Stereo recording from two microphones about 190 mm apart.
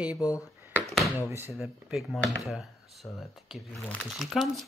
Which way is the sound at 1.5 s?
Centre (ahead or behind).